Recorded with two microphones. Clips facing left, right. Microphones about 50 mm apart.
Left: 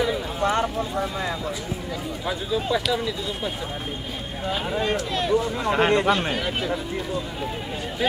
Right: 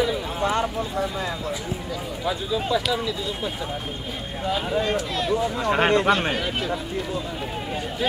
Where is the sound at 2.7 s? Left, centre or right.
Centre.